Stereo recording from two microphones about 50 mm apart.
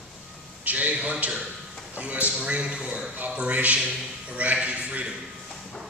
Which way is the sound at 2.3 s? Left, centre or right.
Right.